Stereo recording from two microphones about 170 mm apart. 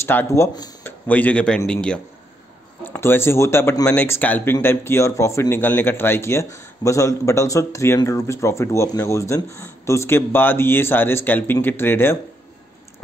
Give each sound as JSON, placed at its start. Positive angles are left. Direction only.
{"t": 0.0, "sound": "speech", "side_deg": 15}
{"t": 0.8, "sound": "speech", "side_deg": 10}